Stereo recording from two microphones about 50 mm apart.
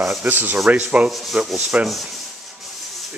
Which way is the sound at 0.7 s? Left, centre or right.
Right.